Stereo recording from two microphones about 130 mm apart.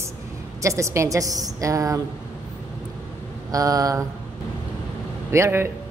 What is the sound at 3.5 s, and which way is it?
Speech, 25° right (ahead or behind).